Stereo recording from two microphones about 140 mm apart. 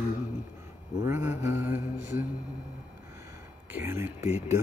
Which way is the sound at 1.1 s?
15° right (ahead or behind).